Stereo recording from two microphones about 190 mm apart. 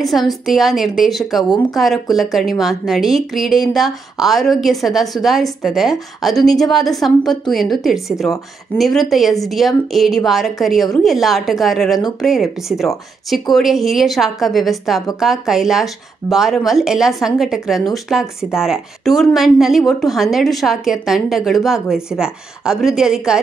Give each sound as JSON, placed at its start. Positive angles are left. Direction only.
{"t": 0.0, "sound": "speech", "side_deg": 0}